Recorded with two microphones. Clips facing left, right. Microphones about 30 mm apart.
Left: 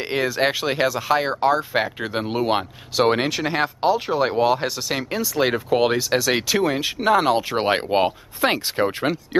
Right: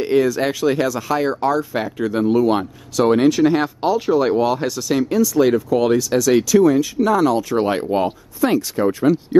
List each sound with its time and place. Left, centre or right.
0.0 s speech: left